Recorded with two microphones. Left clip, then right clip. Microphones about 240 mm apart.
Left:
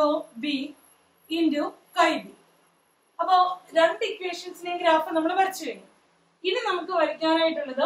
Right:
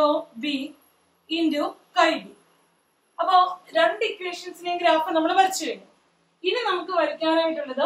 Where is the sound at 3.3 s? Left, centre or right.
Centre.